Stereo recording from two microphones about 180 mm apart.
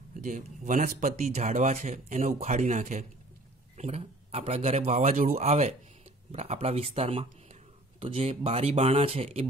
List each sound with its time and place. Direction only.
0.2 s speech: 45° right (ahead or behind)